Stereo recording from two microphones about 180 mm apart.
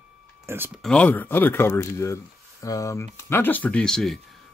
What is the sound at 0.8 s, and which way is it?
Speech, 5° left (ahead or behind).